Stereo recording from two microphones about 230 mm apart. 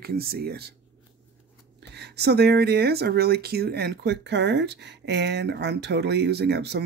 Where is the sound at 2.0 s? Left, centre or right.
Right.